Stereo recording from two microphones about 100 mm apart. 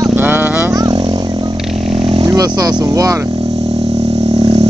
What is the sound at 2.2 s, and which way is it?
Speech, 40° right (ahead or behind).